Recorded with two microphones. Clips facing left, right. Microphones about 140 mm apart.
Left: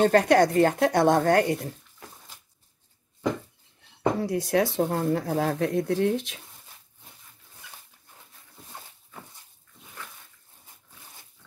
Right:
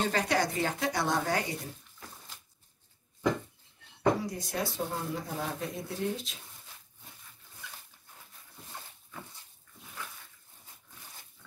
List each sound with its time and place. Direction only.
0.0 s speech: 55° left (ahead or behind)
4.2 s speech: 70° left (ahead or behind)